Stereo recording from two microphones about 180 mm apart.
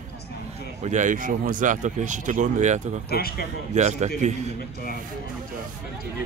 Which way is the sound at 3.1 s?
55° left (ahead or behind).